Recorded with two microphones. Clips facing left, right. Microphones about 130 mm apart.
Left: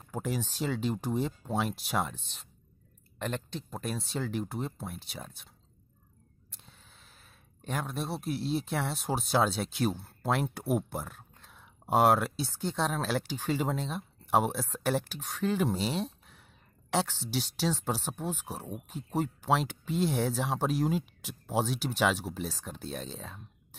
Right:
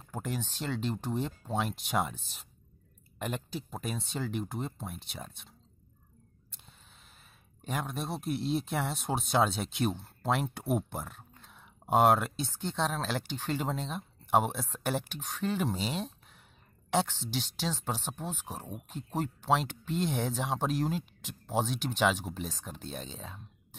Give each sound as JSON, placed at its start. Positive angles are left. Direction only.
{"t": 0.1, "sound": "speech", "side_deg": 5}
{"t": 7.6, "sound": "speech", "side_deg": 0}